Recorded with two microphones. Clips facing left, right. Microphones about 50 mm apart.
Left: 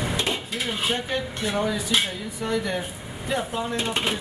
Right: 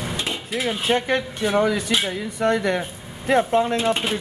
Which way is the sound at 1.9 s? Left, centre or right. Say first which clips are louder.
Right 2 dB; right.